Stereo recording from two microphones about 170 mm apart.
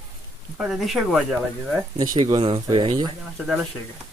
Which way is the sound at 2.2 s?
30° right (ahead or behind).